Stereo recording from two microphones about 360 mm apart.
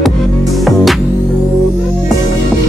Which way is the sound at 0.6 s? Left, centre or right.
Centre.